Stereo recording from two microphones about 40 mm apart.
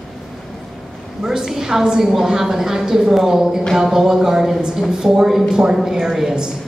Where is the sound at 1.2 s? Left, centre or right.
Centre.